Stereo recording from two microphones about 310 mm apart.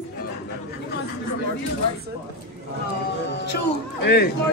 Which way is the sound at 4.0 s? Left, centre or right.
Left.